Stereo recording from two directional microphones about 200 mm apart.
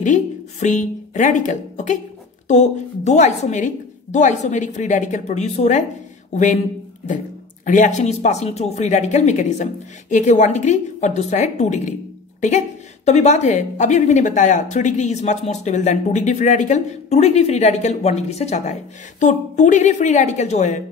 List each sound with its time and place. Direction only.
0.0 s a woman's voice: 35° left (ahead or behind)
7.6 s a woman's voice: 40° left (ahead or behind)